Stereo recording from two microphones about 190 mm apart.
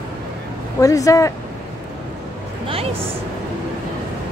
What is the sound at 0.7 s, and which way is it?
Speech, 15° left (ahead or behind).